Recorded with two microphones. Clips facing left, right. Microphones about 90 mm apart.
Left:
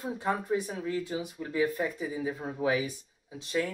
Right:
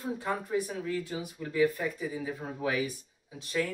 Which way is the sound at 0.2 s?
20° left (ahead or behind).